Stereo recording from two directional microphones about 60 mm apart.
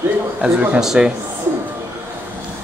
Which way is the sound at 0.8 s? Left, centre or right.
Centre.